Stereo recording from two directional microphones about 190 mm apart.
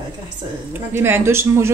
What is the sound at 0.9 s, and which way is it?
Speech, 10° right (ahead or behind).